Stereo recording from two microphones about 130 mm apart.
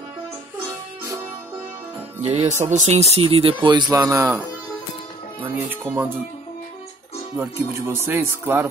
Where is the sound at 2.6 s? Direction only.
65° right (ahead or behind); by 6.1 s 15° right (ahead or behind).